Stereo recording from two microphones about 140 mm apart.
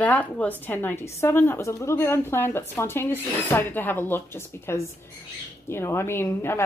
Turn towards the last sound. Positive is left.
turn(degrees=15)  # may be behind; listen again after turning